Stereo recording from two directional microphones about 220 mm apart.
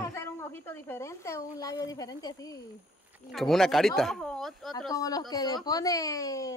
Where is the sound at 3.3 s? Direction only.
Centre (ahead or behind).